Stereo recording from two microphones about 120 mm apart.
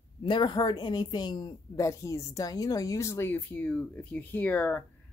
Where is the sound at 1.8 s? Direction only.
25° left (ahead or behind).